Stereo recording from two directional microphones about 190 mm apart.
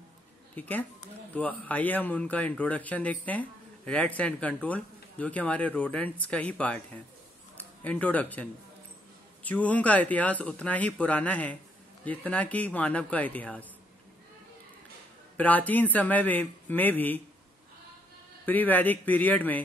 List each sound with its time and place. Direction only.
0.6 s a man's voice: 10° left (ahead or behind)
15.3 s a man's voice: 10° left (ahead or behind)
18.4 s a man's voice: 10° left (ahead or behind)